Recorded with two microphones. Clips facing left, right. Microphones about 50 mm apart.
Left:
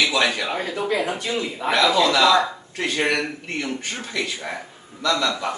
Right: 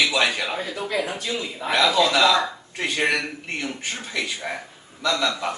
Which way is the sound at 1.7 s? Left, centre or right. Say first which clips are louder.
Left 1 dB; centre.